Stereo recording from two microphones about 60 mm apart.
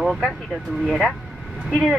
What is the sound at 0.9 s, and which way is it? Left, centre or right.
Speech, centre.